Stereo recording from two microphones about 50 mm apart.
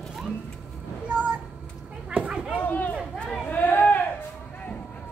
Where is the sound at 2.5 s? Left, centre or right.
Left.